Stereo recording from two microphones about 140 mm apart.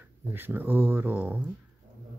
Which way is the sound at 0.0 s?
15° right (ahead or behind).